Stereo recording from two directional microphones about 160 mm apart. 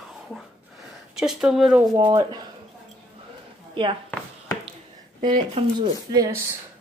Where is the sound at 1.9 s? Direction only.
25° right (ahead or behind).